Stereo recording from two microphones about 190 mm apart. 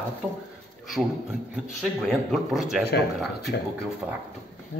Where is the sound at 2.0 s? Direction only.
Centre (ahead or behind).